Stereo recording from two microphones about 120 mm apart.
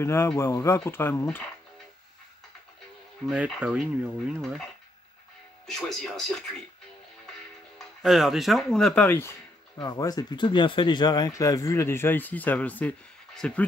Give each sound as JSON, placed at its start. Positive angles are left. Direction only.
{"t": 0.0, "sound": "speech", "side_deg": 20}
{"t": 3.6, "sound": "speech", "side_deg": -10}
{"t": 5.7, "sound": "speech", "side_deg": 5}
{"t": 8.0, "sound": "speech", "side_deg": 0}
{"t": 9.8, "sound": "speech", "side_deg": 30}